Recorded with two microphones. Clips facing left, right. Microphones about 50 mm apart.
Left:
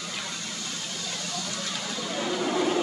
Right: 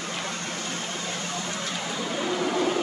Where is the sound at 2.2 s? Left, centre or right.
Centre.